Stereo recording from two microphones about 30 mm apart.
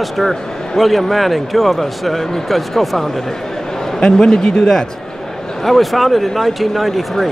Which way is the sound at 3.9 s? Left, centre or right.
Left.